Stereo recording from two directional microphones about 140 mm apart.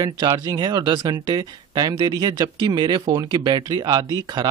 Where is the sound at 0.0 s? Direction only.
30° right (ahead or behind).